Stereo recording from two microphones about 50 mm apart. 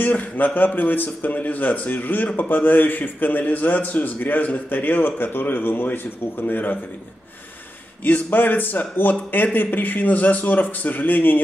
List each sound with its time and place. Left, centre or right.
0.0 s a man's voice: left
8.0 s a man's voice: left